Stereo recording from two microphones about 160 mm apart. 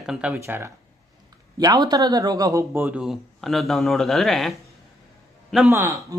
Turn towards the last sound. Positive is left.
turn(degrees=-20)  # may be behind; listen again after turning